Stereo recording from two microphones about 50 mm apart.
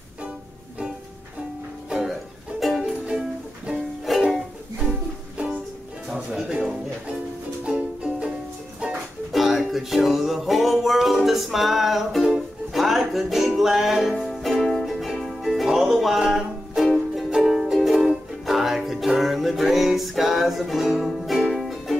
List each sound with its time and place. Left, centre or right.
1.9 s music: centre
4.2 s music: centre
6.3 s a sound: centre
7.6 s music: centre
9.3 s music: centre